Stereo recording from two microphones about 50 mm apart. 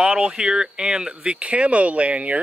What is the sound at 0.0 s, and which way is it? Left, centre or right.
Speech, centre.